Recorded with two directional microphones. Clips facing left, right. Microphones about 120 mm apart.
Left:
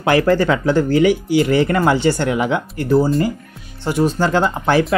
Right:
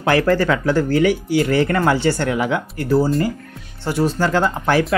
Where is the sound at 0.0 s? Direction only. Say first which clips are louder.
Left 2 dB; 20° left (ahead or behind).